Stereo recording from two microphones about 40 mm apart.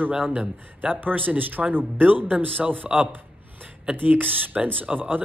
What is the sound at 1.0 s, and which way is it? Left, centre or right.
Speech, right.